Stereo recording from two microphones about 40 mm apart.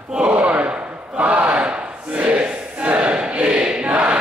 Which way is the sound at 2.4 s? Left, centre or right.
Right.